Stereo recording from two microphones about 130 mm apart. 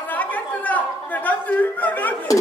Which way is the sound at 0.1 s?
10° left (ahead or behind).